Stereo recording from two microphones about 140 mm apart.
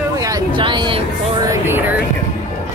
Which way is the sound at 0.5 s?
35° right (ahead or behind).